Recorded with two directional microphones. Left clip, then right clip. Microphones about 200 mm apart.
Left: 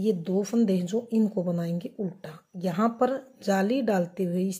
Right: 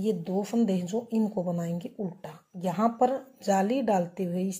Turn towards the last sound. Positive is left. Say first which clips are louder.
# left 3 dB
turn(degrees=25)  # may be behind; listen again after turning